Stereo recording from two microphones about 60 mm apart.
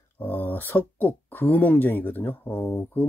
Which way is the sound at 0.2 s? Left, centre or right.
Left.